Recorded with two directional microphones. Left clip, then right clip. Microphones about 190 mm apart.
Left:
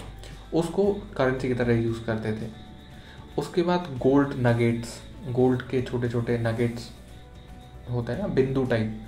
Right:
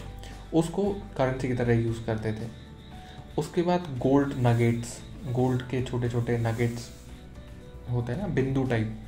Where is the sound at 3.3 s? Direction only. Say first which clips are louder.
Left 2 dB; 35° right (ahead or behind).